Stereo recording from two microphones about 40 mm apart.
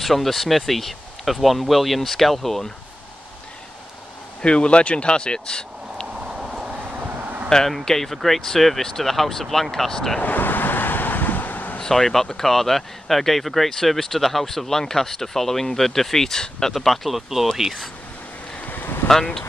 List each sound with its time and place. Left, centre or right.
0.0 s speech: centre
4.4 s speech: left
6.1 s vehicle: centre
6.9 s a sound: right
7.4 s speech: centre
10.2 s wind: left
11.8 s speech: centre
16.7 s speech: centre
18.7 s boat: left